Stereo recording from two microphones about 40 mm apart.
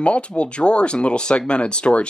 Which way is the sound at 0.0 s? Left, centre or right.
Left.